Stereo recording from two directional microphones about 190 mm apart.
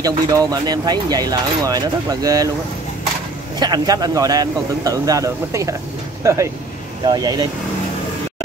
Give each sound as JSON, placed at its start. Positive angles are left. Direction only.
{"t": 0.0, "sound": "speech", "side_deg": -20}
{"t": 3.5, "sound": "speech", "side_deg": -20}